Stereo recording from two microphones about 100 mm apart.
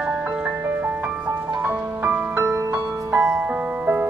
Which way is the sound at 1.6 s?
15° right (ahead or behind).